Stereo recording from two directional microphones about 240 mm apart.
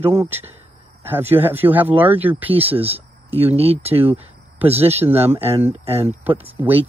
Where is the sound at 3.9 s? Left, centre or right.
Centre.